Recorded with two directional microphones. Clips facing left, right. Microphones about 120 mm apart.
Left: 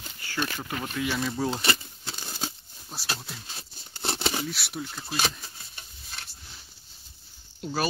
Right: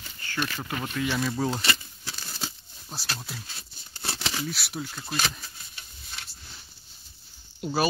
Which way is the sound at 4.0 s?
25° left (ahead or behind).